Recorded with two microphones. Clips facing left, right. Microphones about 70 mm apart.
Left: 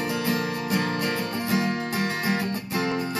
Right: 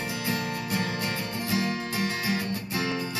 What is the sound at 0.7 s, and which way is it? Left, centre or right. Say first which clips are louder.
Music: left 5 dB; left.